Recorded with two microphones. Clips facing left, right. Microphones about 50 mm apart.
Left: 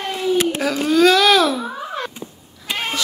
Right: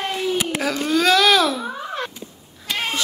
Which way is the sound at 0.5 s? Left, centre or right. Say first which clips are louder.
Left 4 dB; centre.